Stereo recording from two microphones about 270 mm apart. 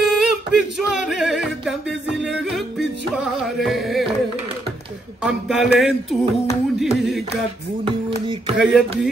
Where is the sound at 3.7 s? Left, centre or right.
Centre.